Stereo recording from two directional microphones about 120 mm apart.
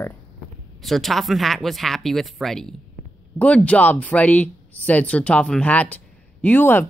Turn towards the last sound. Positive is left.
turn(degrees=15)  # may be behind; listen again after turning